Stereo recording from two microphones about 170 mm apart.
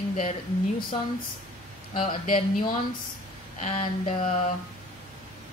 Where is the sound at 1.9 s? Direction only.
30° left (ahead or behind).